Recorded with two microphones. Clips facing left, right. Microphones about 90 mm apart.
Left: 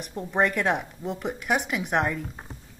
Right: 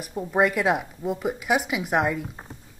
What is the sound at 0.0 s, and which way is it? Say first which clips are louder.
Speech: right 2 dB; 10° right (ahead or behind).